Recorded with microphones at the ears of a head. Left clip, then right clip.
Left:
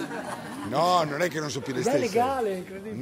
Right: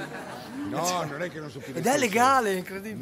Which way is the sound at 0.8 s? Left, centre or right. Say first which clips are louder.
Left 6 dB; left.